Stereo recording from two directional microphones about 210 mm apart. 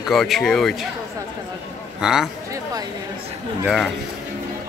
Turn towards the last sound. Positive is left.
turn(degrees=0)  # may be behind; listen again after turning